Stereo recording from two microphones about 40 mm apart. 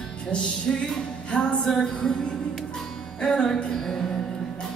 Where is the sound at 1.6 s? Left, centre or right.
Centre.